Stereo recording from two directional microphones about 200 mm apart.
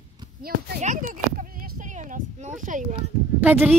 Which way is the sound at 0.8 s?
40° right (ahead or behind).